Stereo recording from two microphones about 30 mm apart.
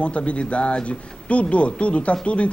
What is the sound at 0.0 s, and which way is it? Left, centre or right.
A man's voice, left.